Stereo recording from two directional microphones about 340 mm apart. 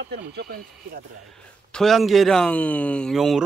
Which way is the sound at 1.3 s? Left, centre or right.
Centre.